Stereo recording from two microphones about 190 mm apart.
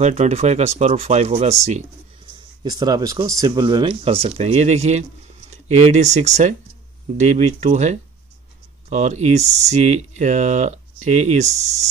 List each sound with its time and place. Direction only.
0.0 s speech: 35° right (ahead or behind)
2.6 s speech: 20° right (ahead or behind); by 11.6 s 35° right (ahead or behind)